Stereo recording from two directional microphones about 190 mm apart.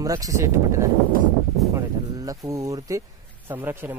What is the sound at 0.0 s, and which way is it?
Speech, 15° right (ahead or behind).